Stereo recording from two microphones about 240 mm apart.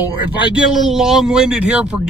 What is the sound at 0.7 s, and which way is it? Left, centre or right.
A man's voice, centre.